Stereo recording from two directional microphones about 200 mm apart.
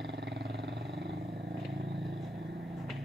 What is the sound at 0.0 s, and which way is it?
Vehicle, 55° right (ahead or behind).